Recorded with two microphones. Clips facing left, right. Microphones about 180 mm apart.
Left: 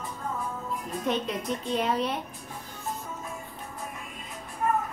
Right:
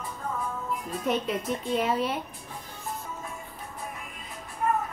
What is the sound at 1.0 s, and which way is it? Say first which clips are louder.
A woman's voice: right 1 dB; 5° right (ahead or behind).